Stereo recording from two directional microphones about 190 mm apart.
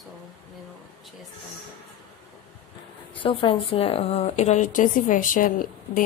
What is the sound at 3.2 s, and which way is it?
Speech, 25° left (ahead or behind).